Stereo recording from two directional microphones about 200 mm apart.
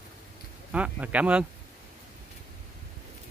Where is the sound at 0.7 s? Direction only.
5° right (ahead or behind).